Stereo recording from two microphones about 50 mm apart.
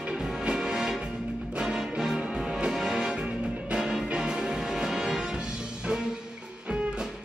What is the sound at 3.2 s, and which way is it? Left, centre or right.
Music, centre.